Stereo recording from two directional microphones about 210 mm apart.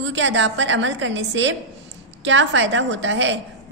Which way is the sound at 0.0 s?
60° right (ahead or behind).